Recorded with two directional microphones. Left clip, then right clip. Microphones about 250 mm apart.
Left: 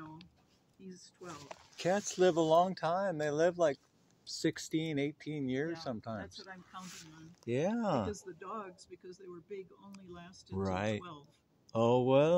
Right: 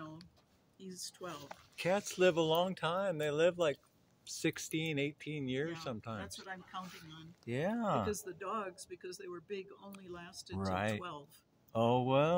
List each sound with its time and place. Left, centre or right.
1.8 s speech: centre
6.2 s speech: right
7.4 s speech: left
8.1 s speech: right
10.5 s speech: left